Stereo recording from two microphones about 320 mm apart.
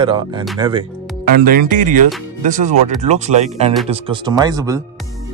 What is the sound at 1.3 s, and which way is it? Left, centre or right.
Speech, right.